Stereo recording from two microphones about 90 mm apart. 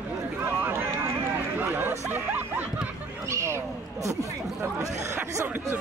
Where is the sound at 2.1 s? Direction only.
20° right (ahead or behind).